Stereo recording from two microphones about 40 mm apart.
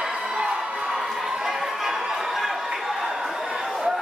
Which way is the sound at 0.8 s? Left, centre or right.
Centre.